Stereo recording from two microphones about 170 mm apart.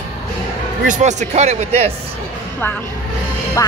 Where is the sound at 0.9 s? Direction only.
45° right (ahead or behind).